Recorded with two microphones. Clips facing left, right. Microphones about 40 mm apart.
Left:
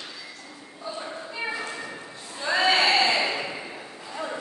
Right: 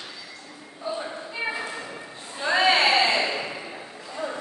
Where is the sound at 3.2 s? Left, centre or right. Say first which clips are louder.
Even; centre.